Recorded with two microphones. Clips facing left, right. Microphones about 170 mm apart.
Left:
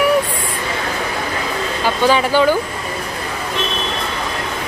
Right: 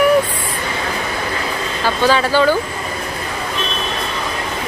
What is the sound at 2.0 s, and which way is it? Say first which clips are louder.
Speech: even; 15° left (ahead or behind).